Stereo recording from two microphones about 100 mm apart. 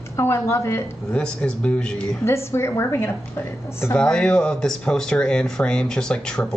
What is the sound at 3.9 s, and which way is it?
Speech, 10° left (ahead or behind).